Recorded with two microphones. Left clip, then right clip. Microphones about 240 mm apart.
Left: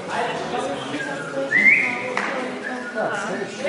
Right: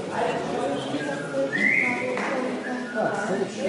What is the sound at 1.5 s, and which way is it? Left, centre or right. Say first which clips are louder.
Whistling: left 9 dB; centre.